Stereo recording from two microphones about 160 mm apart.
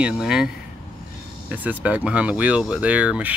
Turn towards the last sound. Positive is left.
turn(degrees=-10)  # may be behind; listen again after turning